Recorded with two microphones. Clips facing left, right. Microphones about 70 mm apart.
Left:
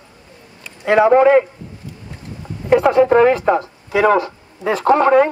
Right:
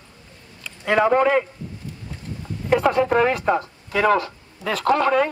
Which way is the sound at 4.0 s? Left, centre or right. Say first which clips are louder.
Left 4 dB; centre.